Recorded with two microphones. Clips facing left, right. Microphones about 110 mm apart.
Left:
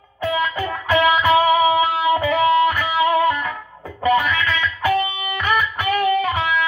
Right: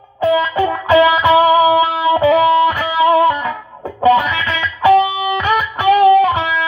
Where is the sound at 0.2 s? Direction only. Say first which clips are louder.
Right 8 dB; 25° right (ahead or behind).